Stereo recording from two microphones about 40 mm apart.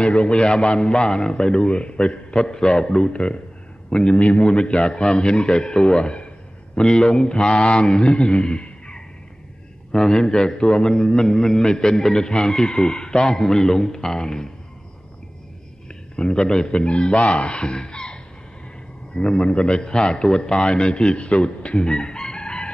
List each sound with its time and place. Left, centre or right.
0.0 s a man's voice: left
9.9 s a man's voice: centre
15.9 s a man's voice: centre
21.7 s chicken: left